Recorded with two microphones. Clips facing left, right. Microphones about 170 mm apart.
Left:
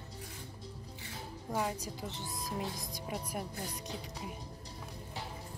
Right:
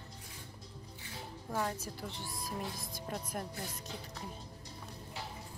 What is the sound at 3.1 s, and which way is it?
Speech, 5° left (ahead or behind).